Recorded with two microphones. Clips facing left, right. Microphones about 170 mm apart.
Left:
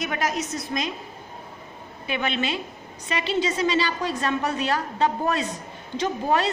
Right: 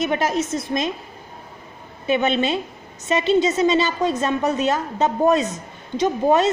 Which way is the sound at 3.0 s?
25° right (ahead or behind).